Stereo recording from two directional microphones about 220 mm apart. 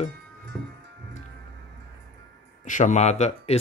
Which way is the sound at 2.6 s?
35° left (ahead or behind).